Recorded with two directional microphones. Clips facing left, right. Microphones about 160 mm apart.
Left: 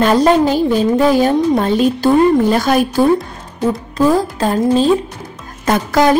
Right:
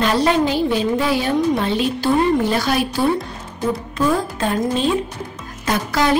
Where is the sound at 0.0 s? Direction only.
45° left (ahead or behind).